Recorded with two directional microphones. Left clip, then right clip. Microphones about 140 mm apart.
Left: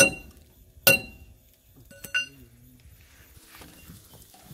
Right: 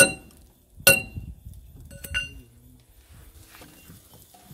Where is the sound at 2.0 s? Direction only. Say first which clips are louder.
Left 1 dB; 10° left (ahead or behind).